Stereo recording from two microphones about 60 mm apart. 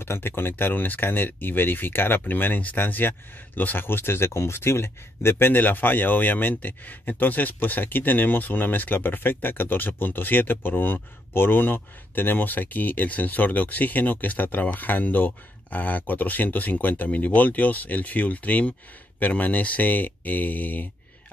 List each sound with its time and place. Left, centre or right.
0.0 s speech: left
5.5 s a man's voice: left